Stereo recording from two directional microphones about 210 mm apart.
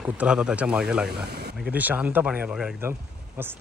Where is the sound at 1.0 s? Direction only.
50° right (ahead or behind).